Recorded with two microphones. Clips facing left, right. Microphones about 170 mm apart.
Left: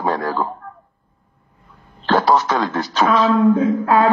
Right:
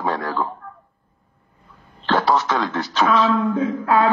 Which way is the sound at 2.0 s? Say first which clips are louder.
Left 3 dB; 40° left (ahead or behind).